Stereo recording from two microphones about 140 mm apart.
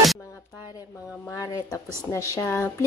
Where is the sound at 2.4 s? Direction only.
15° left (ahead or behind).